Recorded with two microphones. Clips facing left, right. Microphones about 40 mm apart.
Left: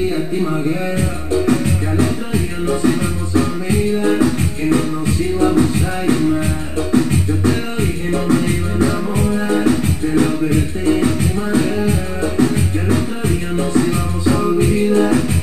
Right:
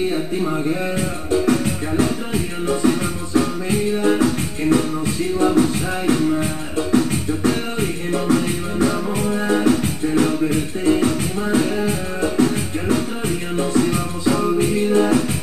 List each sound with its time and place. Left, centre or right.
0.1 s music: centre
13.6 s music: centre